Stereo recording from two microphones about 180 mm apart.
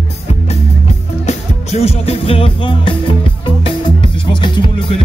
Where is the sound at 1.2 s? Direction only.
35° left (ahead or behind).